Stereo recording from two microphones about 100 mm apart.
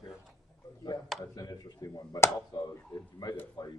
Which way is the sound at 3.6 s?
50° left (ahead or behind).